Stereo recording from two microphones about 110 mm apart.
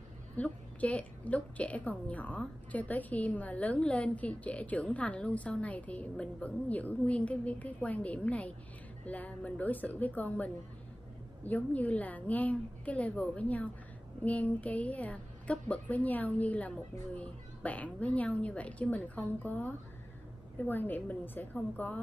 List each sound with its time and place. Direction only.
0.4 s a woman's voice: 10° left (ahead or behind)